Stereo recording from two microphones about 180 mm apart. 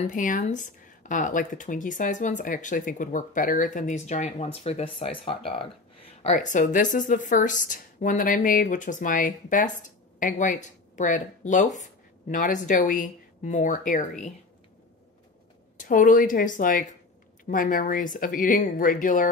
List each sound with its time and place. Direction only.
0.0 s speech: 45° left (ahead or behind)
15.8 s speech: 45° left (ahead or behind)